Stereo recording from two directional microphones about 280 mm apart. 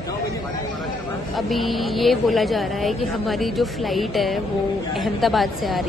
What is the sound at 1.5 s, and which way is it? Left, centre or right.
A woman's voice, centre.